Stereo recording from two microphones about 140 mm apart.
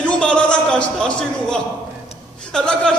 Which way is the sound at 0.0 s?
10° left (ahead or behind).